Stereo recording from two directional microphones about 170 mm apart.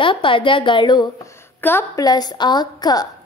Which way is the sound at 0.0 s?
30° left (ahead or behind).